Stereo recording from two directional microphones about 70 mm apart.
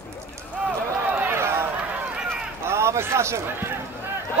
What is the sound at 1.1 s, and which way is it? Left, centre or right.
Run, right.